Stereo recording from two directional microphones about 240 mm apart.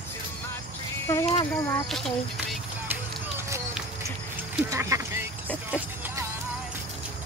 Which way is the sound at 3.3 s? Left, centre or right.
Centre.